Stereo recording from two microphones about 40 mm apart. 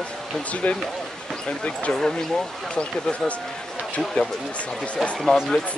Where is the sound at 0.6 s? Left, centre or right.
Left.